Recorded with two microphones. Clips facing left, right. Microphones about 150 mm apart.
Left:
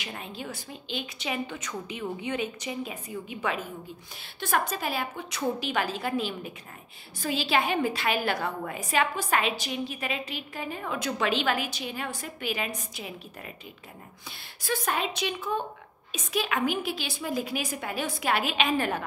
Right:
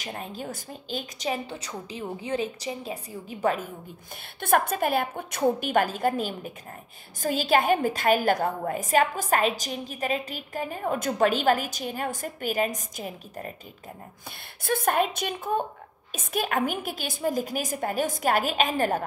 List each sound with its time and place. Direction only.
0.0 s a woman's voice: 40° right (ahead or behind)
4.4 s a woman's voice: 55° right (ahead or behind)
14.6 s a woman's voice: 55° right (ahead or behind)